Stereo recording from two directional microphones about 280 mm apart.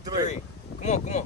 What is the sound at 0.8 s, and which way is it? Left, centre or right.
Speech, left.